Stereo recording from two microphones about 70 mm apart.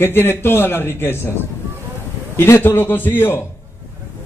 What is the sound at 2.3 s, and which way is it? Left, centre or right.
A man's voice, left.